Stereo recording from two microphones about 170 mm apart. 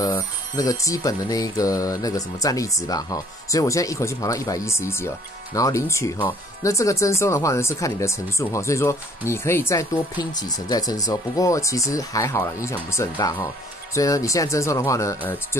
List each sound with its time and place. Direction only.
0.0 s music: 20° left (ahead or behind)
9.3 s speech: 15° left (ahead or behind)
10.3 s music: 20° left (ahead or behind)